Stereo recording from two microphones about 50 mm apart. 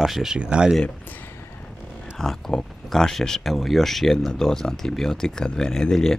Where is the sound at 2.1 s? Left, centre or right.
Centre.